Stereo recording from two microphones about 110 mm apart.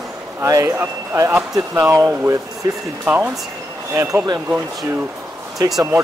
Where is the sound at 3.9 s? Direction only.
30° right (ahead or behind).